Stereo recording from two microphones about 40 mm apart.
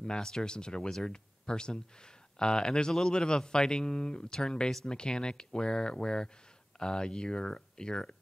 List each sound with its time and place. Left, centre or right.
0.0 s speech: centre